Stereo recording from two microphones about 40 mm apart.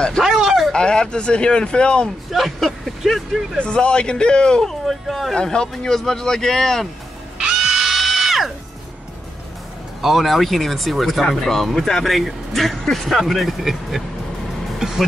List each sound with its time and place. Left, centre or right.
0.2 s a sound: centre
0.7 s speech: centre
2.3 s speech: centre
3.5 s speech: left
4.6 s speech: centre
5.0 s speech: centre
5.3 s speech: centre
7.3 s music: centre
10.0 s speech: centre